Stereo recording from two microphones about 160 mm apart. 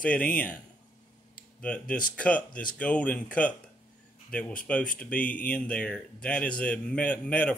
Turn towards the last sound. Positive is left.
turn(degrees=10)  # may be behind; listen again after turning